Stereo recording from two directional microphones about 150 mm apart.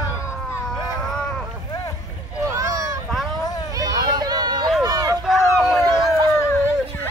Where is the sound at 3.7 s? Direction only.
25° right (ahead or behind).